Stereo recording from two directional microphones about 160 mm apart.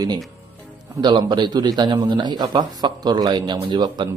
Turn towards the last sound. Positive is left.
turn(degrees=-30)  # may be behind; listen again after turning